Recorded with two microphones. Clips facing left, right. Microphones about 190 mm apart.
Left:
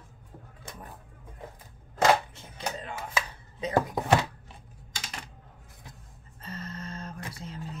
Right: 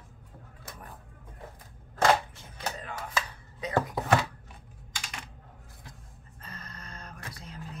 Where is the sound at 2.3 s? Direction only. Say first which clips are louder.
Left 2 dB; 25° left (ahead or behind).